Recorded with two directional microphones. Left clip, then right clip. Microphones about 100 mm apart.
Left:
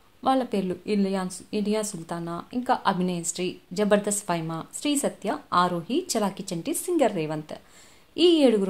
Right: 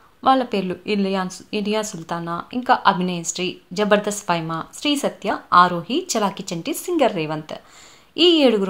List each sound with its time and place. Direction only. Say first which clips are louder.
0.2 s a woman's voice: right 7 dB; 15° right (ahead or behind)